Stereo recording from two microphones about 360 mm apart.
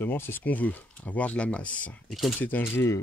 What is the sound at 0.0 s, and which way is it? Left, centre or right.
Speech, centre.